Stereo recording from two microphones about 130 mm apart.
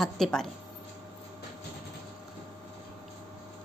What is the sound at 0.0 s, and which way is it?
Speech, 5° left (ahead or behind).